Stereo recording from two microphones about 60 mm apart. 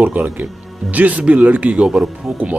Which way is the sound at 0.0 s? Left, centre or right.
Right.